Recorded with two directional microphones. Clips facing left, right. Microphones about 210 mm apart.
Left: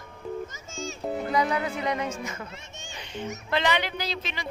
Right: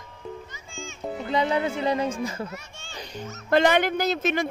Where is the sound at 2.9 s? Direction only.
40° right (ahead or behind).